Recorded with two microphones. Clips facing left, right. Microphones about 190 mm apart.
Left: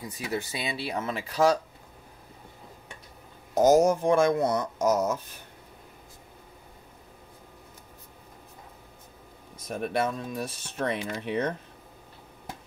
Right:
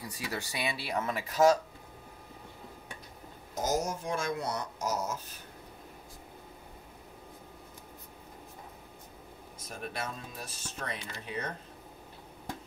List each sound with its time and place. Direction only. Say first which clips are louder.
0.0 s speech: left 6 dB; 20° left (ahead or behind)
3.5 s speech: left 12 dB; 65° left (ahead or behind)
9.7 s speech: left 11 dB; 60° left (ahead or behind)